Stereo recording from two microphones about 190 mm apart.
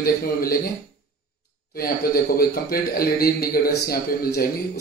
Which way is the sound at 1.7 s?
50° left (ahead or behind).